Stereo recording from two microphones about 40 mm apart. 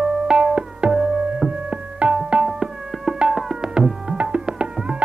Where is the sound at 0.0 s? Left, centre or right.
Centre.